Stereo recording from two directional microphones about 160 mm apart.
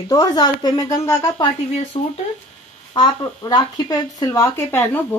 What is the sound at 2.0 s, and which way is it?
Speech, 40° left (ahead or behind).